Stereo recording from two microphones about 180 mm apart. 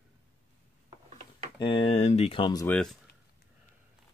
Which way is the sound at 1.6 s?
30° left (ahead or behind).